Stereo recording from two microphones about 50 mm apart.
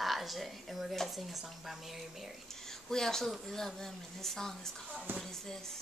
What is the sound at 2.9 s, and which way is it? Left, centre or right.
Speech, centre.